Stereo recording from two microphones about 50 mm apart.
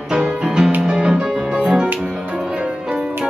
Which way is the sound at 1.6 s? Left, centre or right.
Centre.